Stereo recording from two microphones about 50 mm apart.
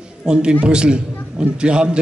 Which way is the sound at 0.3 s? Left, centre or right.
Centre.